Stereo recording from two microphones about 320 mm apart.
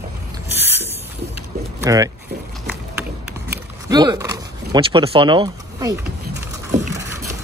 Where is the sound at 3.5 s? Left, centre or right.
Centre.